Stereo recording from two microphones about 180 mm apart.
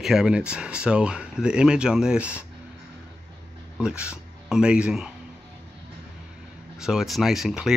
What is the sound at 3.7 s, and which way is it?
Speech, 5° right (ahead or behind).